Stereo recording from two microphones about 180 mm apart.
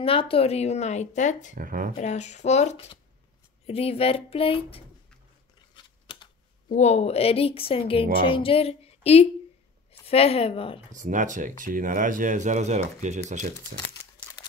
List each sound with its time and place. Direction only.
0.0 s speech: 30° left (ahead or behind)
1.5 s speech: 50° right (ahead or behind)
2.0 s speech: 40° left (ahead or behind)
6.7 s speech: 40° left (ahead or behind)
10.9 s speech: 45° right (ahead or behind)